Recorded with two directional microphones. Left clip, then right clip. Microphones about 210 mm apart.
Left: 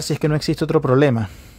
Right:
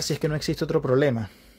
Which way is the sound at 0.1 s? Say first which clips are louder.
Left 9 dB; 15° left (ahead or behind).